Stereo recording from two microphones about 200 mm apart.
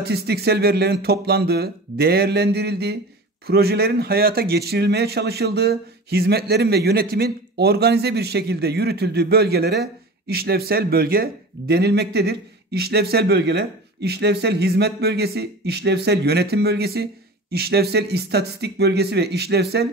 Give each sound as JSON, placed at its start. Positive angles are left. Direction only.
{"t": 0.0, "sound": "speech", "side_deg": -55}